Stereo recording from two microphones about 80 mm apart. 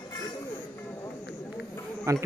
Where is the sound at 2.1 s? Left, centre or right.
Right.